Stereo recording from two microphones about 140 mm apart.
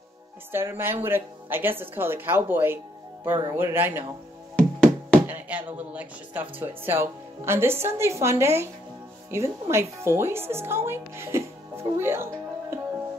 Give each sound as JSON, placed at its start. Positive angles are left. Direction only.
{"t": 0.5, "sound": "speech", "side_deg": -15}
{"t": 4.6, "sound": "music", "side_deg": 5}
{"t": 5.2, "sound": "speech", "side_deg": -10}